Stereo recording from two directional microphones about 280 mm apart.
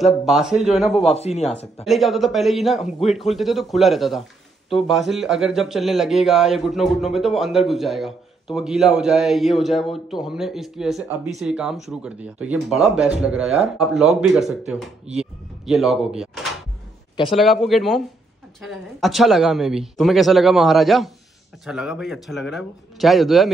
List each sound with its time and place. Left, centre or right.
0.0 s speech: centre
1.1 s speech: left
1.9 s speech: centre